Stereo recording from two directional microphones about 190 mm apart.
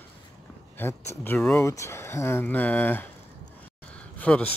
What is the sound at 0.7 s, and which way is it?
Speech, 10° left (ahead or behind).